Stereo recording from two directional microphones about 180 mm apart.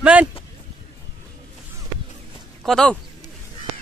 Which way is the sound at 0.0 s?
5° right (ahead or behind).